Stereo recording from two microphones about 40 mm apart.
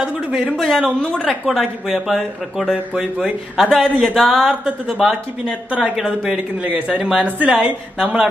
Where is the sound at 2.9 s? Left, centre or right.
Right.